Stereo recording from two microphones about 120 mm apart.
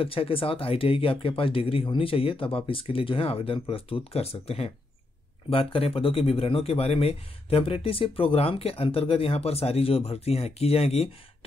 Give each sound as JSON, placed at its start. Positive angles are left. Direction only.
{"t": 0.0, "sound": "speech", "side_deg": 50}